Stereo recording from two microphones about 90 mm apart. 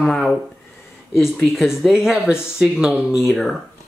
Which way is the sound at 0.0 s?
5° left (ahead or behind).